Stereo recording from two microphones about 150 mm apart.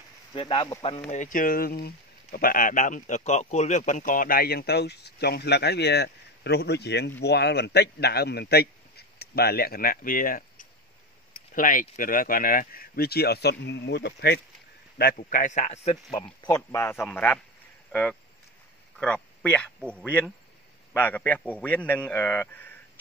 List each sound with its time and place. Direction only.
0.3 s speech: 35° left (ahead or behind)
1.1 s a man's voice: 60° left (ahead or behind); by 14.4 s 90° left
15.0 s a man's voice: 75° left (ahead or behind); by 16.2 s 45° left (ahead or behind)
16.2 s a man's voice: 25° left (ahead or behind)
18.9 s a man's voice: 5° left (ahead or behind)